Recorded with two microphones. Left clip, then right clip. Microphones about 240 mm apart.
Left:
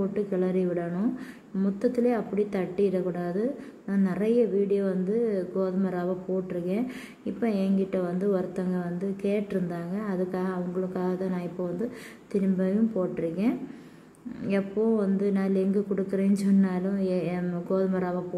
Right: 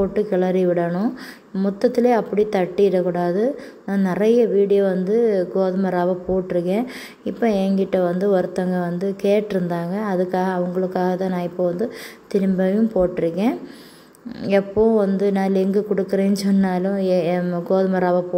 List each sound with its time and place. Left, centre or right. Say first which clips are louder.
0.1 s a woman's voice: right 8 dB; centre
7.3 s a woman's voice: right 9 dB; centre